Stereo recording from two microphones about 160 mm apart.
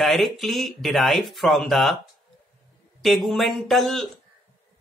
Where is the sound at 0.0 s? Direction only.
Centre (ahead or behind).